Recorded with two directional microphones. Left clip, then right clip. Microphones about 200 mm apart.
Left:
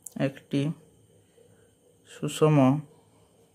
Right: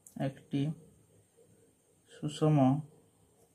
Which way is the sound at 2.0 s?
45° left (ahead or behind).